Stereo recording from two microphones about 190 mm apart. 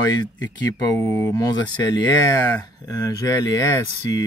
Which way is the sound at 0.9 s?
15° left (ahead or behind).